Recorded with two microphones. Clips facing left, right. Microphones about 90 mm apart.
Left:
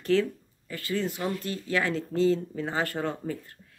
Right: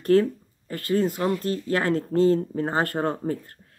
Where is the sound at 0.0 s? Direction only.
45° right (ahead or behind).